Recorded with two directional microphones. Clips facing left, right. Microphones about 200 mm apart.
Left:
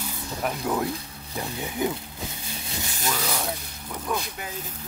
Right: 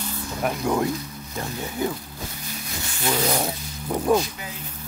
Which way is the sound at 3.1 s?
35° right (ahead or behind).